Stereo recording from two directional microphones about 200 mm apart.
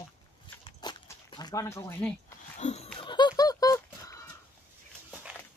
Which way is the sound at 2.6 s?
35° left (ahead or behind).